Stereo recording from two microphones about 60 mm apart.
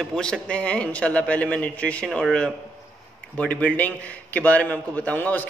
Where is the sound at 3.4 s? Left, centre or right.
Left.